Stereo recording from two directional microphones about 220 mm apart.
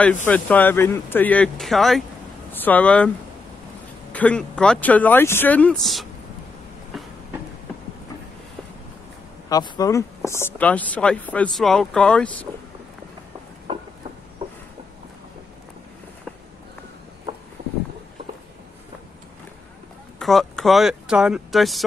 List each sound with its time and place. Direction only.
0.0 s speech: 5° left (ahead or behind)
4.1 s speech: 5° left (ahead or behind)
9.5 s speech: 15° left (ahead or behind)
13.7 s a sound: 25° right (ahead or behind)
17.6 s vehicle: 45° right (ahead or behind)
20.2 s speech: centre (ahead or behind)